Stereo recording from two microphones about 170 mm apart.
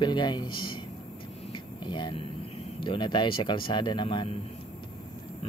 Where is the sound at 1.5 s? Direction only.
30° left (ahead or behind).